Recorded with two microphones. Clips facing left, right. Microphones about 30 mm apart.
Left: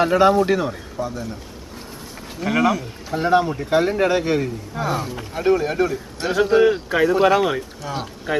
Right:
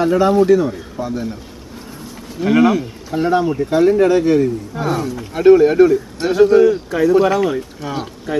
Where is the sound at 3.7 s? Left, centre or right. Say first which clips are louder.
Right 6 dB; centre.